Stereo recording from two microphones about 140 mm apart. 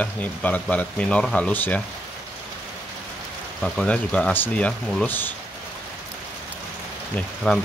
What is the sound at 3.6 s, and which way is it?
Speech, 5° left (ahead or behind).